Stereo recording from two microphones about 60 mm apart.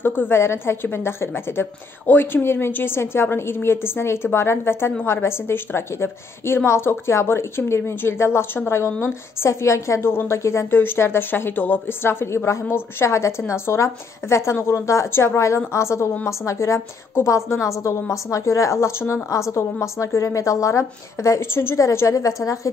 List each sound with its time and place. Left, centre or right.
0.0 s a woman's voice: left
10.7 s a woman's voice: left